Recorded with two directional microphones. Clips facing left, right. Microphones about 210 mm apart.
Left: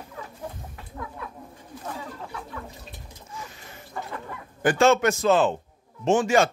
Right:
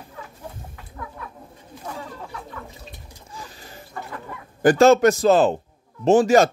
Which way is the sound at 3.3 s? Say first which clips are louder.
Right 1 dB; 35° right (ahead or behind).